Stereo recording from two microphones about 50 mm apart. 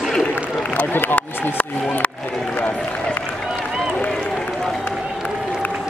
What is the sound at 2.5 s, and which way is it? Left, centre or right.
Run, left.